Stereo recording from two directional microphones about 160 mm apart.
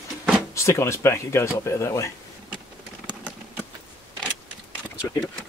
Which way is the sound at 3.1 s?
10° right (ahead or behind).